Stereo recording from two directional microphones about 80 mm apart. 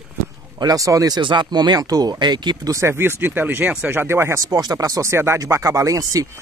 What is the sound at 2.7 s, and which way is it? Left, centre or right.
Speech, right.